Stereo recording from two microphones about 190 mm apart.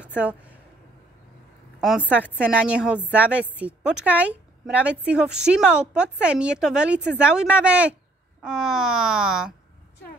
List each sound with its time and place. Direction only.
0.2 s speech: 5° right (ahead or behind)
1.8 s a woman's voice: 5° right (ahead or behind)